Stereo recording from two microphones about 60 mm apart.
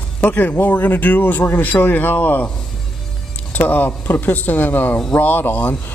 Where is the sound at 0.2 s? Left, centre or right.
Left.